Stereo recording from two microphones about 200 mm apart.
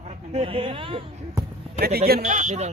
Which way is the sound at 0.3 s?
30° right (ahead or behind).